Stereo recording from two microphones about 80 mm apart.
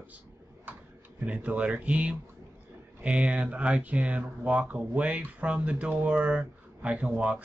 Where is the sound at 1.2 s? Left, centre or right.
Centre.